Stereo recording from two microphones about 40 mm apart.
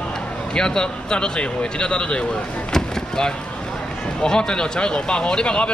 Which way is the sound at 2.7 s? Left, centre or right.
Centre.